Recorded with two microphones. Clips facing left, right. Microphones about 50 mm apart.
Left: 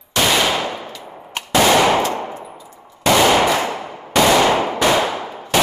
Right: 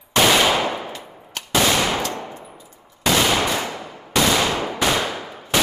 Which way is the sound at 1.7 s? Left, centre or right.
Left.